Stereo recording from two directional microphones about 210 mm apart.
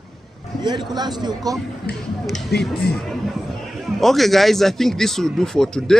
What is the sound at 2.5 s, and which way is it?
Speech, 50° left (ahead or behind).